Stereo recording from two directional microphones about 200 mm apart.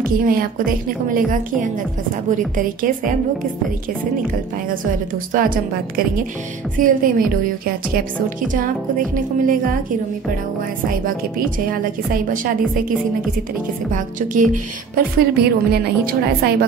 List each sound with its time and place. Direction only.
0.3 s a woman's voice: 45° right (ahead or behind)
5.3 s a woman's voice: 45° right (ahead or behind)
11.1 s a woman's voice: 45° right (ahead or behind)
13.9 s a woman's voice: 40° right (ahead or behind)